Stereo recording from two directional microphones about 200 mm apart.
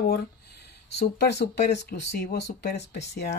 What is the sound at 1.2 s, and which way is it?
Speech, 55° left (ahead or behind).